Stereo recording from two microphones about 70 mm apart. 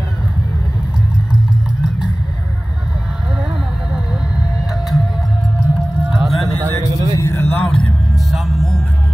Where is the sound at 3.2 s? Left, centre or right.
Centre.